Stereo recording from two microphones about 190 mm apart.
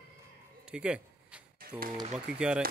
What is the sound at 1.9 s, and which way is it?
Speech, 30° right (ahead or behind).